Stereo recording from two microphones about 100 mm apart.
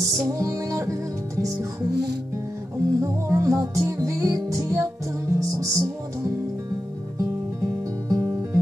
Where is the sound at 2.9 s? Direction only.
30° right (ahead or behind).